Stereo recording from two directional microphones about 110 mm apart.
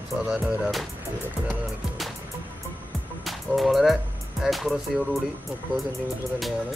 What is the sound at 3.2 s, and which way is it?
Speech, centre (ahead or behind).